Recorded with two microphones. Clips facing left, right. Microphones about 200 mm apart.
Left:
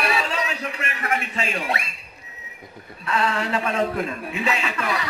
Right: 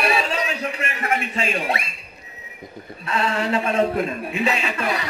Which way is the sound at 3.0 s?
25° right (ahead or behind).